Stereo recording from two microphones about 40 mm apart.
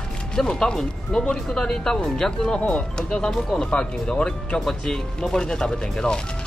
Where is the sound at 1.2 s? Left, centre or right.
Centre.